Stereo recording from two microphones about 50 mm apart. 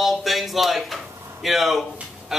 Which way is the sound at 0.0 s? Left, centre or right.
Centre.